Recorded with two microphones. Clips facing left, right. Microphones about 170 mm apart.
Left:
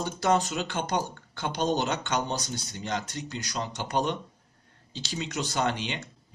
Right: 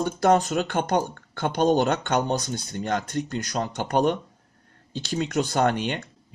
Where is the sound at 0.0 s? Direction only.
55° right (ahead or behind).